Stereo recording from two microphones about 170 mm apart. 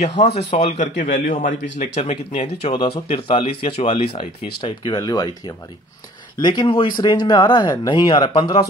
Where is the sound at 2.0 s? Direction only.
40° left (ahead or behind).